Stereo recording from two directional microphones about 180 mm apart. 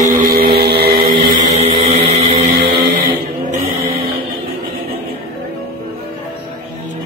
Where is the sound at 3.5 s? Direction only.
35° right (ahead or behind).